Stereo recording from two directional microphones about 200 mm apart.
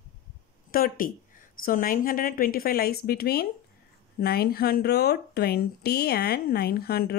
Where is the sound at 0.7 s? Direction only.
45° left (ahead or behind).